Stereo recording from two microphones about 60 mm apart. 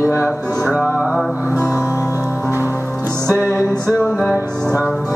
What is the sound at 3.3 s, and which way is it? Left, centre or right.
Music, left.